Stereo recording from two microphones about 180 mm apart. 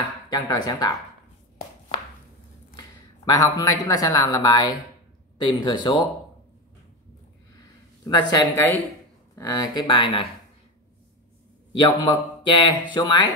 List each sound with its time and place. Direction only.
0.3 s speech: 20° left (ahead or behind)
3.3 s speech: 20° left (ahead or behind)
8.0 s speech: 20° left (ahead or behind)
11.8 s speech: 25° left (ahead or behind)